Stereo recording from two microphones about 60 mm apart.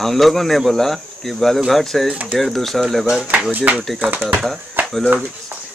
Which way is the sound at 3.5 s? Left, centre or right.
Right.